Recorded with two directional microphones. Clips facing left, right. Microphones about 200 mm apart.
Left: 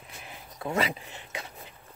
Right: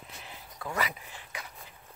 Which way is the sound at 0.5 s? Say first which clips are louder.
Left 5 dB; 25° left (ahead or behind).